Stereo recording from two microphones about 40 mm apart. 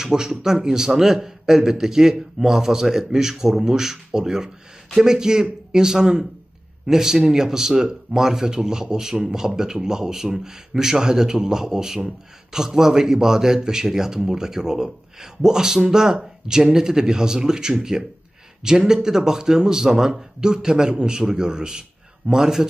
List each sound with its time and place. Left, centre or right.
0.0 s a man's voice: centre